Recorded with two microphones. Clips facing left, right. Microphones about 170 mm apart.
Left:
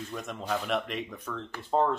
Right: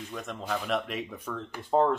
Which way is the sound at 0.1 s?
Centre (ahead or behind).